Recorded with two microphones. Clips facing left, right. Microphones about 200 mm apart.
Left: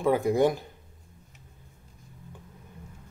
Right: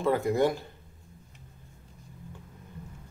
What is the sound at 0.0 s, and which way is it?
Speech, 15° left (ahead or behind).